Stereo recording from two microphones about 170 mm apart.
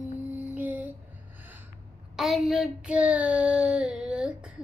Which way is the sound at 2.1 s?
Centre (ahead or behind).